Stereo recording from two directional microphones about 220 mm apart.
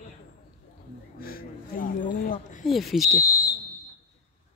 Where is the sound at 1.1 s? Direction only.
40° left (ahead or behind).